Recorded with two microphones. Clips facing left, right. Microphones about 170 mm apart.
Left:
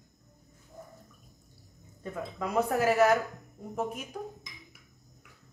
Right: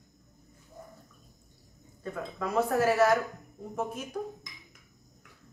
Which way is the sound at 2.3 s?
15° left (ahead or behind).